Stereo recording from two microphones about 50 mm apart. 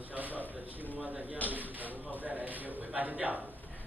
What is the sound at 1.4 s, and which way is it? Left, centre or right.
A man's voice, right.